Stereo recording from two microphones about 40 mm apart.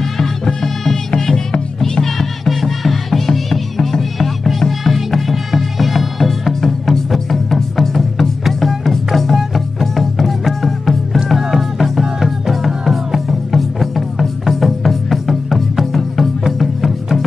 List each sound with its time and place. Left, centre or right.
0.2 s music: centre